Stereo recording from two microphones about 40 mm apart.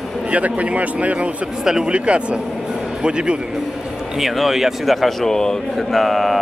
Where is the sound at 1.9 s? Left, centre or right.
Right.